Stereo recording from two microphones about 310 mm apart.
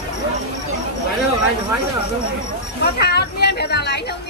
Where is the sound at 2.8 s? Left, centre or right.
Left.